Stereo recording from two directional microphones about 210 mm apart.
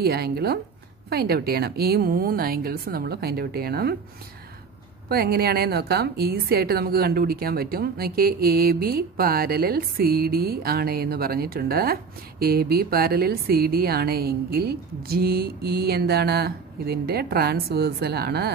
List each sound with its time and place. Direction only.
0.0 s a woman's voice: 50° right (ahead or behind)
5.1 s a woman's voice: 45° right (ahead or behind)